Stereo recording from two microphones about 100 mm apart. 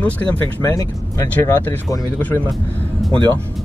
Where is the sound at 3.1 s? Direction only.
45° right (ahead or behind).